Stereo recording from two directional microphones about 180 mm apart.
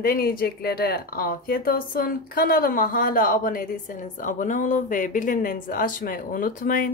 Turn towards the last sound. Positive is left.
turn(degrees=50)  # may be behind; listen again after turning